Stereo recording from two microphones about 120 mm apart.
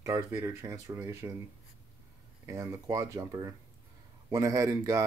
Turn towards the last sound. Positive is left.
turn(degrees=-30)  # may be behind; listen again after turning